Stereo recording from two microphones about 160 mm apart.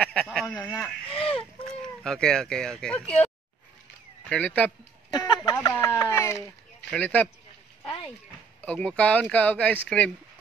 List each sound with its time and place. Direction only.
0.0 s speech: 5° left (ahead or behind)
4.3 s speech: 10° left (ahead or behind)
5.1 s speech: 25° left (ahead or behind); by 7.2 s 10° left (ahead or behind)
8.5 s speech: 10° left (ahead or behind)